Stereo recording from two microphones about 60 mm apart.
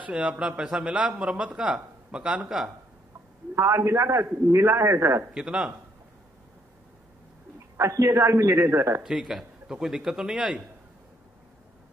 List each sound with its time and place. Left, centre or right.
0.0 s a man's voice: right
3.5 s a man's voice: right
5.3 s speech: centre
7.7 s a man's voice: right
9.0 s speech: centre